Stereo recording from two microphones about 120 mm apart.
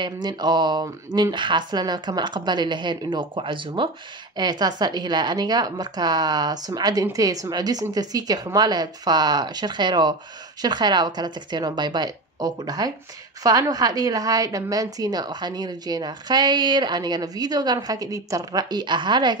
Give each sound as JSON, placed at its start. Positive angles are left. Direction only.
{"t": 0.0, "sound": "a woman's voice", "side_deg": -35}